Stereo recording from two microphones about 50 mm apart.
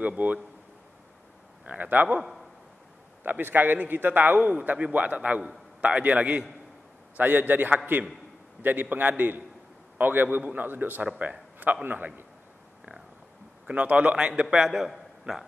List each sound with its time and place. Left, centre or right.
0.0 s a man's voice: right
1.7 s a man's voice: right
3.3 s a man's voice: right
7.2 s a man's voice: right
13.7 s a man's voice: right